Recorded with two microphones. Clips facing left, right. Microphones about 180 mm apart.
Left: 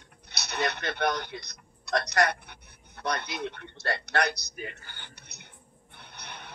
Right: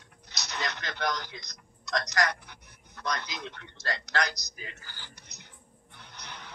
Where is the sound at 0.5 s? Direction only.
60° left (ahead or behind).